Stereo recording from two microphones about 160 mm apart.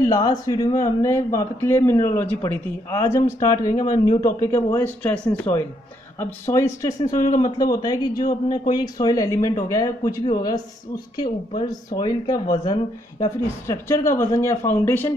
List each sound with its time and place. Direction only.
0.0 s a man's voice: 20° left (ahead or behind)